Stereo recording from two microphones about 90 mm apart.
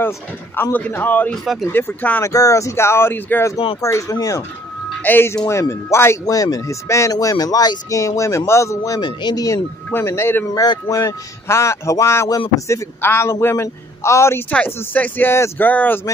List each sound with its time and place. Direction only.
0.6 s speech: 20° left (ahead or behind)
1.3 s speech: centre (ahead or behind)
1.7 s speech: 25° left (ahead or behind)
2.2 s speech: 35° left (ahead or behind)
3.8 s speech: 35° left (ahead or behind)
5.0 s speech: 25° left (ahead or behind)
6.2 s speech: 40° left (ahead or behind)
9.0 s speech: 50° left (ahead or behind)
9.8 s speech: 30° left (ahead or behind)
10.5 s speech: 45° left (ahead or behind)
14.5 s speech: 15° left (ahead or behind)
15.7 s speech: 15° left (ahead or behind)